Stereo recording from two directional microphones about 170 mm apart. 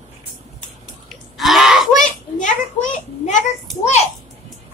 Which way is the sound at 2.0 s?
45° left (ahead or behind).